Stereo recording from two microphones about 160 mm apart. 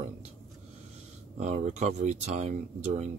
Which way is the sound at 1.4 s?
45° right (ahead or behind).